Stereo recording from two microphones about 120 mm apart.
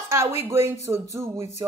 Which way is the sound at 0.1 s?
20° right (ahead or behind).